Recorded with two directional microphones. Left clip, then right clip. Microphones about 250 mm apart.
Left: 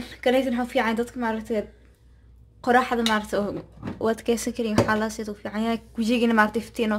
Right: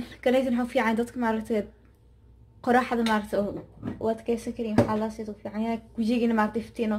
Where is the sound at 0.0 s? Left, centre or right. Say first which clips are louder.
Left 2 dB; centre.